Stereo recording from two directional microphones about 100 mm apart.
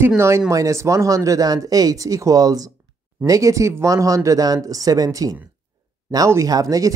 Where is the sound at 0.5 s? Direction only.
30° right (ahead or behind).